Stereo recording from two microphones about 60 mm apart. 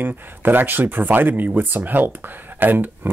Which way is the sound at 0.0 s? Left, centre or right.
Right.